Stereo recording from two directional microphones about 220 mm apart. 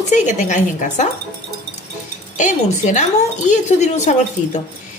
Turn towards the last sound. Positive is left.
turn(degrees=35)  # may be behind; listen again after turning